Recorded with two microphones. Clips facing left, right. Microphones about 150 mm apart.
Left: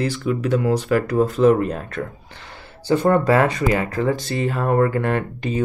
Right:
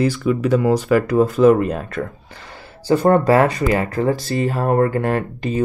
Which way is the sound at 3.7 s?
40° right (ahead or behind).